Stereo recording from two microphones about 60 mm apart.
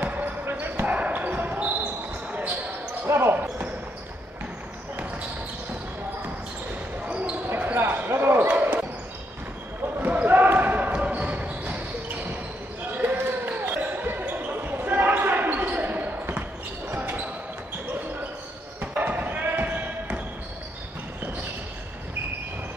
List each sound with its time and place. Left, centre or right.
0.0 s basketball bounce: right
0.8 s basketball bounce: right
3.1 s basketball bounce: right
7.1 s basketball bounce: right
7.4 s basketball bounce: right
10.2 s basketball bounce: right
18.8 s basketball bounce: right